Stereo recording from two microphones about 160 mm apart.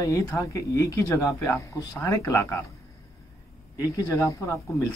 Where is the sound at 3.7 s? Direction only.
20° left (ahead or behind).